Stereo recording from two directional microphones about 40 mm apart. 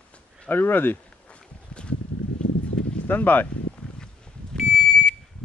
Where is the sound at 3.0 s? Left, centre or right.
Left.